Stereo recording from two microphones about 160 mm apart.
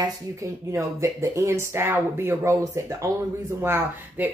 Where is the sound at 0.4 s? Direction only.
20° right (ahead or behind).